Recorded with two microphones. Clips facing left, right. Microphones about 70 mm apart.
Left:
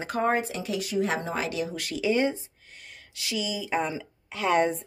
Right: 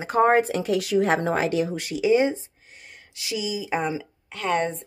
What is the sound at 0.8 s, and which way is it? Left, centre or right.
Speech, right.